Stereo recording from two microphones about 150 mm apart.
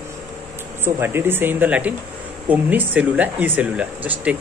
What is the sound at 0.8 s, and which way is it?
Speech, 15° right (ahead or behind).